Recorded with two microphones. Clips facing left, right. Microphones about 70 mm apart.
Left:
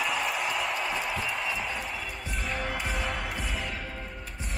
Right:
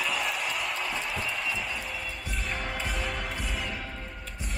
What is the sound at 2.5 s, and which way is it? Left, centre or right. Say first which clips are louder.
Music: left 2 dB; centre.